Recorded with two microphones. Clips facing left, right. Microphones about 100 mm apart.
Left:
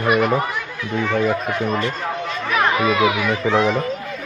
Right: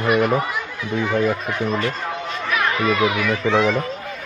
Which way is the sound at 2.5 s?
25° left (ahead or behind).